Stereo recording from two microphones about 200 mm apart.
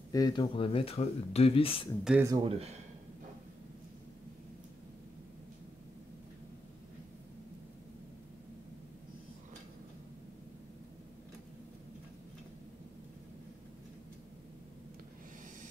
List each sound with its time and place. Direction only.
0.1 s speech: 20° left (ahead or behind)
2.0 s speech: 10° right (ahead or behind)
2.4 s speech: 30° right (ahead or behind)